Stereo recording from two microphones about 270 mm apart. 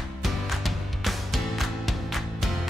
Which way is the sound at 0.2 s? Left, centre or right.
Centre.